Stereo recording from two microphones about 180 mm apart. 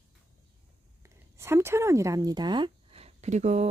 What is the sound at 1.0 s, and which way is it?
A woman's voice, 15° right (ahead or behind).